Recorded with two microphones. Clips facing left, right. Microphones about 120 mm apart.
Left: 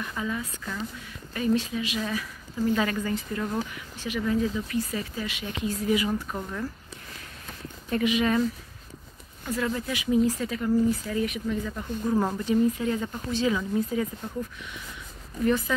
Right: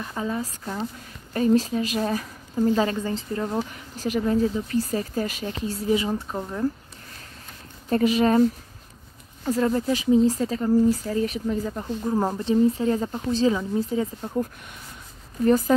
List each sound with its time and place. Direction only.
0.0 s speech: 35° right (ahead or behind)
3.7 s speech: 40° right (ahead or behind); by 6.7 s 25° right (ahead or behind)
7.9 s speech: 35° right (ahead or behind)
12.1 s speech: 20° right (ahead or behind); by 15.7 s 40° right (ahead or behind)